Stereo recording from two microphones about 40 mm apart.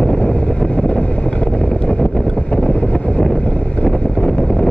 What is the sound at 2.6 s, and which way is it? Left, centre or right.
Vehicle, left.